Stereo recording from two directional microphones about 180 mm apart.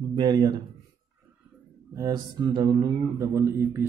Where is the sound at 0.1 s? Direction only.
25° right (ahead or behind).